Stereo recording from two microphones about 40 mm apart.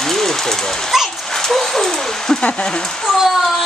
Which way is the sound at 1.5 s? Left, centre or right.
Centre.